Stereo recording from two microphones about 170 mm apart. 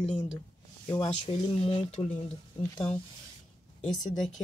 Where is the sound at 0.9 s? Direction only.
30° left (ahead or behind).